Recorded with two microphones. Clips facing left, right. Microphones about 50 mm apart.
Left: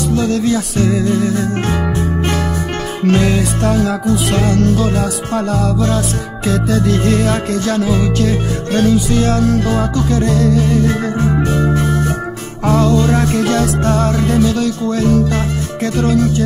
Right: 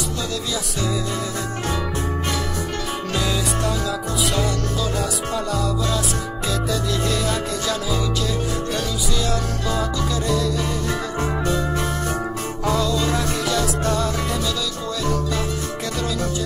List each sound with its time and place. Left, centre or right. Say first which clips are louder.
0.1 s music: left 11 dB; left
3.1 s music: left 11 dB; left
12.6 s music: left 8 dB; left